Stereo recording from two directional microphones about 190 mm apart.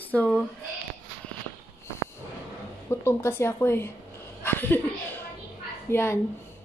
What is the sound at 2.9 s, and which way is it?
A woman's voice, 15° left (ahead or behind).